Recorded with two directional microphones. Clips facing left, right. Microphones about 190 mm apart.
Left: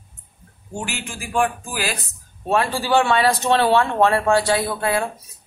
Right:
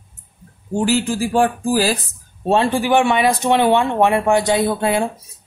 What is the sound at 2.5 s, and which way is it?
Speech, 25° right (ahead or behind).